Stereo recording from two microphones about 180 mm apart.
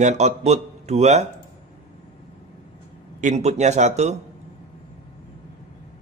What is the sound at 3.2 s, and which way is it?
Speech, 40° right (ahead or behind).